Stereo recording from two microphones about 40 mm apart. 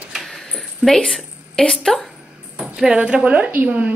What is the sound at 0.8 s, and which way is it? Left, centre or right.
Speech, right.